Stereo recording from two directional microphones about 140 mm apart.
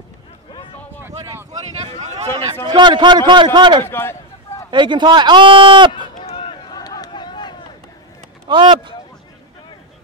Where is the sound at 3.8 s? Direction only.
15° left (ahead or behind).